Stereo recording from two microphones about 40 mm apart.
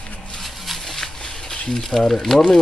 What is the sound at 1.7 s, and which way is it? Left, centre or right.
Speech, centre.